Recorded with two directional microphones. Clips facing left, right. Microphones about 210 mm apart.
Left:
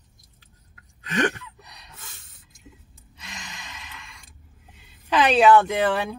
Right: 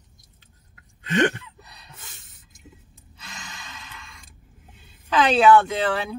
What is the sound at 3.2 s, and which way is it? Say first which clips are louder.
Gasp: even; 15° left (ahead or behind).